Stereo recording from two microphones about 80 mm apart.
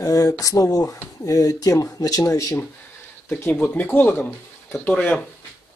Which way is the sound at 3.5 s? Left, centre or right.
Left.